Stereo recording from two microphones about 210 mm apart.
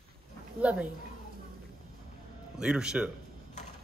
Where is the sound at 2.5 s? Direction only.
5° right (ahead or behind).